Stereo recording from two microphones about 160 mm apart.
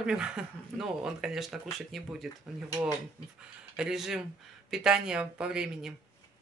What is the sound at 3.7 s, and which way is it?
Speech, 5° right (ahead or behind).